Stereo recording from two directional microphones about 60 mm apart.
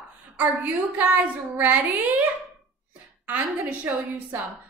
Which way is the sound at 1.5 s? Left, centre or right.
Right.